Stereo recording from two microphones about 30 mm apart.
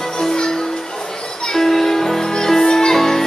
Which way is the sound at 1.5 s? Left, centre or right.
Centre.